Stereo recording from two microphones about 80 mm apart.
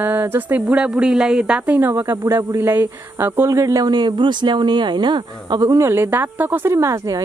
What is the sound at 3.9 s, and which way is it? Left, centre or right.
A woman's voice, right.